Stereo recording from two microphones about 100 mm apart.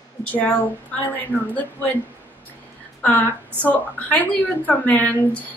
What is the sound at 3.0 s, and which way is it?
A woman's voice, 15° left (ahead or behind).